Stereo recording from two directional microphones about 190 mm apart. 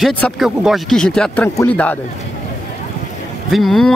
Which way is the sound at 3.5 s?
Centre (ahead or behind).